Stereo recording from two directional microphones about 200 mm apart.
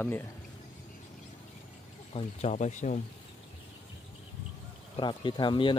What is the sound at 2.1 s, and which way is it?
Speech, 30° left (ahead or behind).